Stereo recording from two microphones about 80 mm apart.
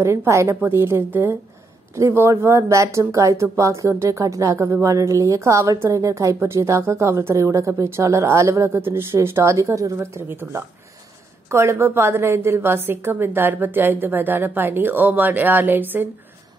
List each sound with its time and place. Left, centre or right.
0.0 s a woman's voice: right